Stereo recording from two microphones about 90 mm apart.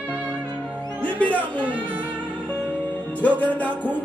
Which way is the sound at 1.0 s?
15° left (ahead or behind).